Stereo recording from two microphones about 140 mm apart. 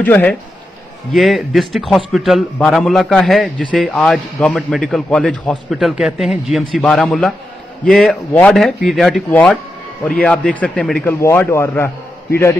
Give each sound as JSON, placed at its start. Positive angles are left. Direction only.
{"t": 0.0, "sound": "a man's voice", "side_deg": 10}
{"t": 1.1, "sound": "a man's voice", "side_deg": 0}
{"t": 8.5, "sound": "a man's voice", "side_deg": 0}
{"t": 11.1, "sound": "a man's voice", "side_deg": 20}